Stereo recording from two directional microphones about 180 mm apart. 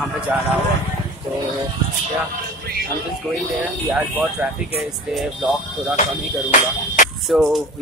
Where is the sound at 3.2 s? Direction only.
5° left (ahead or behind).